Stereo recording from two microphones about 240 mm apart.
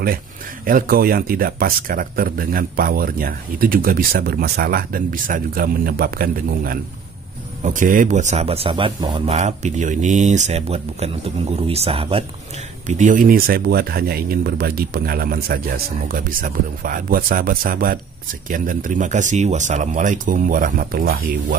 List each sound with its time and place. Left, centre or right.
0.7 s a man's voice: right